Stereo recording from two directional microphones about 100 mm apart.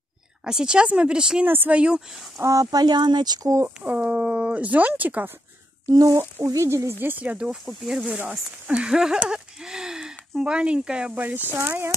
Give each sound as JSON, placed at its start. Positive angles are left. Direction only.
{"t": 0.5, "sound": "speech", "side_deg": -5}
{"t": 1.4, "sound": "speech", "side_deg": -20}
{"t": 2.4, "sound": "speech", "side_deg": -35}
{"t": 3.4, "sound": "speech", "side_deg": -30}
{"t": 3.8, "sound": "speech", "side_deg": -15}
{"t": 5.9, "sound": "speech", "side_deg": -35}
{"t": 7.0, "sound": "speech", "side_deg": -15}
{"t": 7.6, "sound": "speech", "side_deg": 0}
{"t": 8.1, "sound": "speech", "side_deg": -15}